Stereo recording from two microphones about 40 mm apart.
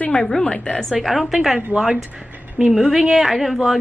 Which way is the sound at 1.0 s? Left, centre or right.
Centre.